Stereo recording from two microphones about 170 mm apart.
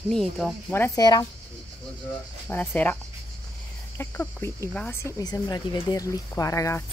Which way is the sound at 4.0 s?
15° left (ahead or behind).